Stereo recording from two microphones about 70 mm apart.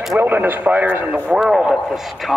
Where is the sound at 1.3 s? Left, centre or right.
Centre.